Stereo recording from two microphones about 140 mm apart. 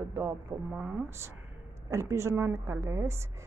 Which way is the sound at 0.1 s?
20° right (ahead or behind).